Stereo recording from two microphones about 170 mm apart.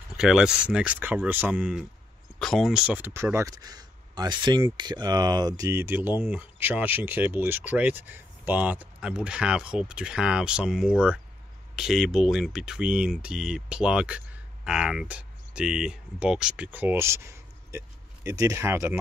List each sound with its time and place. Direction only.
0.2 s speech: 5° right (ahead or behind)